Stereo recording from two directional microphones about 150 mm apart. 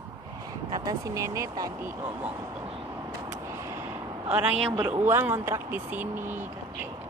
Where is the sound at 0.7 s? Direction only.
25° right (ahead or behind).